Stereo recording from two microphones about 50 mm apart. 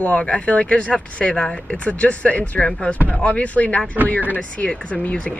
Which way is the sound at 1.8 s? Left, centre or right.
Left.